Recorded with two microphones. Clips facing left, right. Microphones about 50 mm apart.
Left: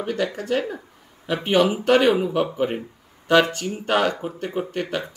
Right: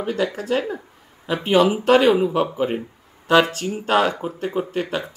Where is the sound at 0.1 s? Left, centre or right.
Centre.